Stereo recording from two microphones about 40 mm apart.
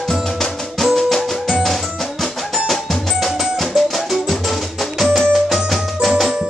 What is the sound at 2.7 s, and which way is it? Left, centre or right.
Drum, centre.